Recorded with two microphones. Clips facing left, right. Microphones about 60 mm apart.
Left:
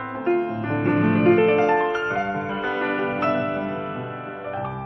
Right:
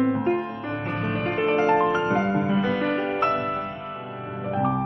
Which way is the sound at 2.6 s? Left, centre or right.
Centre.